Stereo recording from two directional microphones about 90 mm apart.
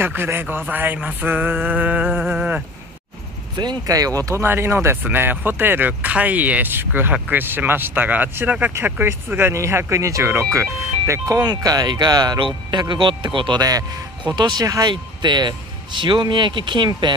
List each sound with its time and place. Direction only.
0.0 s speech: 25° right (ahead or behind)
3.5 s speech: 50° right (ahead or behind)
4.4 s speech: 25° right (ahead or behind); by 12.4 s 50° right (ahead or behind)
12.4 s speech: 65° right (ahead or behind); by 13.8 s 45° right (ahead or behind)
14.2 s speech: 55° right (ahead or behind)